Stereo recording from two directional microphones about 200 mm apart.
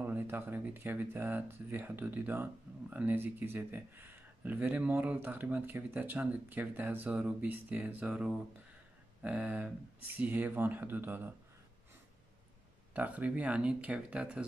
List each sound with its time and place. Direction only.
0.0 s speech: 10° right (ahead or behind)
12.9 s speech: 10° right (ahead or behind)